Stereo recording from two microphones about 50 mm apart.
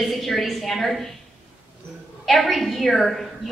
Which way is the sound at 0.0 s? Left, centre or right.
Centre.